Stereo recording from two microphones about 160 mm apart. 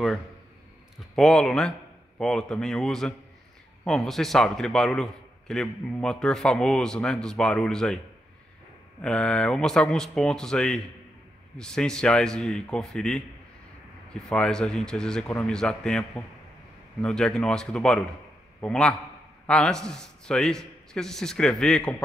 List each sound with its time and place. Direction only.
0.9 s a man's voice: centre (ahead or behind)
9.0 s a man's voice: 5° left (ahead or behind)